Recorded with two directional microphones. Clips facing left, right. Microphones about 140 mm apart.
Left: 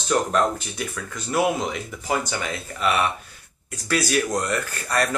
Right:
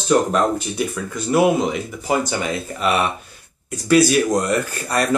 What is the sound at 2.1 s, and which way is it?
Speech, 20° right (ahead or behind).